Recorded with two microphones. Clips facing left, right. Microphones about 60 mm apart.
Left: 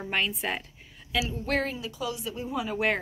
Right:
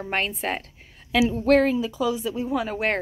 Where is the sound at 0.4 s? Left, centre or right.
Right.